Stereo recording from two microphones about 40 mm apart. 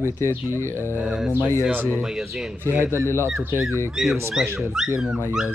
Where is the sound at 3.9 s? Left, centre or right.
Centre.